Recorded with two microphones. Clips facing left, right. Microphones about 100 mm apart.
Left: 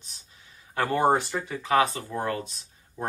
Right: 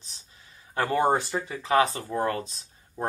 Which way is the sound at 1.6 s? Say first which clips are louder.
Even; 30° right (ahead or behind).